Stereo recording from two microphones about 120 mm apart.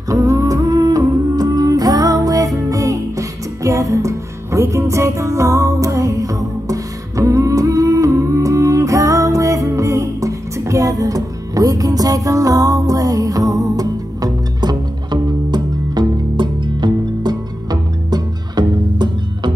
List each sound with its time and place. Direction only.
0.1 s music: 25° right (ahead or behind)